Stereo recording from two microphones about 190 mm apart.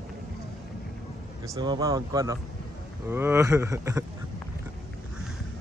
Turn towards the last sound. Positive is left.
turn(degrees=-15)  # may be behind; listen again after turning